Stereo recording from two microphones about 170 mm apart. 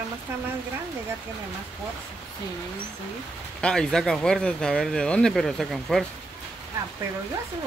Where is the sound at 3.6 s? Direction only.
5° left (ahead or behind).